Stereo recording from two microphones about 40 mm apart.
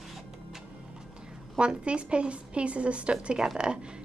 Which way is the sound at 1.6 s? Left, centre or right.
Right.